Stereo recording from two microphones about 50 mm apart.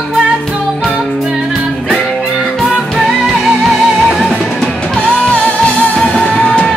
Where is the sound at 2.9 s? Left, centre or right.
Centre.